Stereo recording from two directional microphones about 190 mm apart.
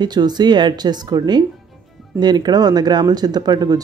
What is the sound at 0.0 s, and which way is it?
Speech, 20° right (ahead or behind).